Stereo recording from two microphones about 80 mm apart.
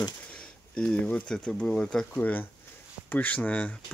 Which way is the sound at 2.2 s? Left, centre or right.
Left.